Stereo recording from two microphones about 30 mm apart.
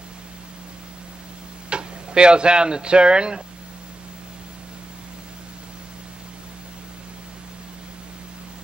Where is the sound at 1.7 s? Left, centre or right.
Right.